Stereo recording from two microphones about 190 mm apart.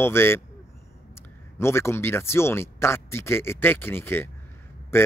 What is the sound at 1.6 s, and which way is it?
Speech, 15° left (ahead or behind).